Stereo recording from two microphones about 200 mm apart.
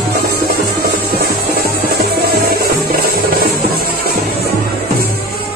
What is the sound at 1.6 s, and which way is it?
Music, 50° right (ahead or behind).